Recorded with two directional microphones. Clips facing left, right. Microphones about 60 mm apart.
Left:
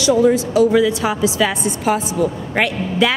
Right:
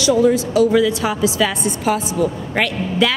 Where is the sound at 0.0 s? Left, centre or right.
Left.